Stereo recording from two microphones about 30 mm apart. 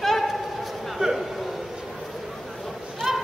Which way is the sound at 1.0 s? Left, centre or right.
Right.